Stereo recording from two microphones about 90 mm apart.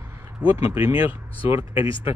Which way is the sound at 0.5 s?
25° right (ahead or behind).